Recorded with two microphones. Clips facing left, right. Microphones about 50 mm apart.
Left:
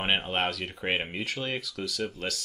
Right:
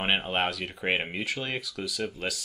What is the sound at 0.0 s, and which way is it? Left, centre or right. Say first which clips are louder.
Speech: right 1 dB; centre.